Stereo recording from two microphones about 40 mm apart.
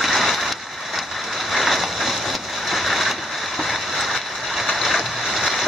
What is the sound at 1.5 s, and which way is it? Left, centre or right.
Boat, centre.